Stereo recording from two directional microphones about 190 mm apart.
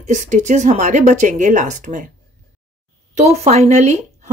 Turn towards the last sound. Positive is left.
turn(degrees=-35)  # may be behind; listen again after turning